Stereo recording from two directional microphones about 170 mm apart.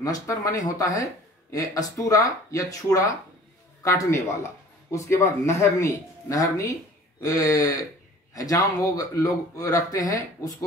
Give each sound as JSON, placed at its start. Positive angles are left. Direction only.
{"t": 0.0, "sound": "a man's voice", "side_deg": 20}